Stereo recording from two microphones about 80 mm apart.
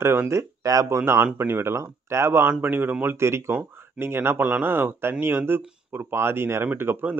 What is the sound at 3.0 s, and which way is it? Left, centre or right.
A man's voice, right.